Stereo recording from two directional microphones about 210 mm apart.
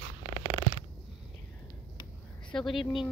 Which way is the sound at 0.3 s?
20° left (ahead or behind).